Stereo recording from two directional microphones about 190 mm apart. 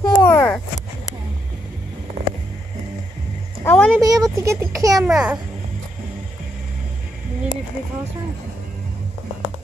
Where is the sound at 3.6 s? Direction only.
10° left (ahead or behind).